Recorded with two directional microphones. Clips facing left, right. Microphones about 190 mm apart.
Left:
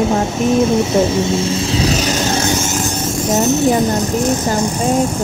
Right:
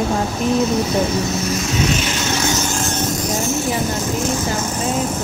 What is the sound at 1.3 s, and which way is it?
Vehicle, 30° left (ahead or behind).